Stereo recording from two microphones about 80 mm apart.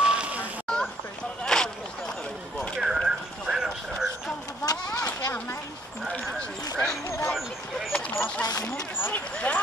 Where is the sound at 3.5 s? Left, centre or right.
Centre.